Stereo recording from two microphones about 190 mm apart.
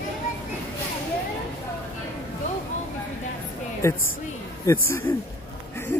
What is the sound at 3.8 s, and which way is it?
A man's voice, 15° left (ahead or behind).